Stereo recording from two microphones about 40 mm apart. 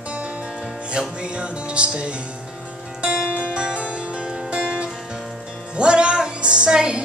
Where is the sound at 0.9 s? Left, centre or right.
Right.